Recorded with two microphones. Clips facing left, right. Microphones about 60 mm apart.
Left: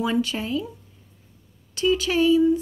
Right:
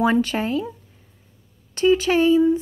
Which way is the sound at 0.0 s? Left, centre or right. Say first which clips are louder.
Right 5 dB; right.